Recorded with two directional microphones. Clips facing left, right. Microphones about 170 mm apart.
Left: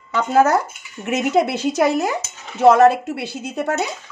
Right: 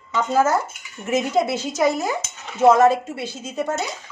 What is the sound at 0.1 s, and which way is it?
Speech, 65° left (ahead or behind).